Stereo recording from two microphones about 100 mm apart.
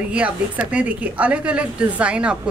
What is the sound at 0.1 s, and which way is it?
Speech, 10° right (ahead or behind).